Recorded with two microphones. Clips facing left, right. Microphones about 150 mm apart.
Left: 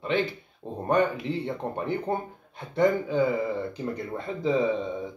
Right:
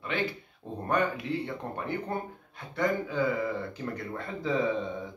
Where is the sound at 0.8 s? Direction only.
25° left (ahead or behind).